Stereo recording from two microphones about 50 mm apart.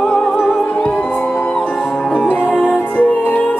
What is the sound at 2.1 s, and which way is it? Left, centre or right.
Music, left.